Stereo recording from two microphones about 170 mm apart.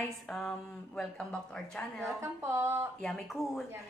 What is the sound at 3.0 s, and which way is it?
Speech, centre (ahead or behind).